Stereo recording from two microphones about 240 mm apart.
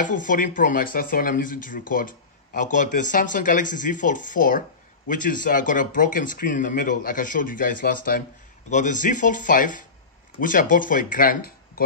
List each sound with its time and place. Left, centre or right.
0.0 s speech: left